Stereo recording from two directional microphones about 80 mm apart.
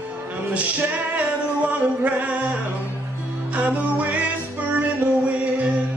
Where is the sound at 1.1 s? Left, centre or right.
Centre.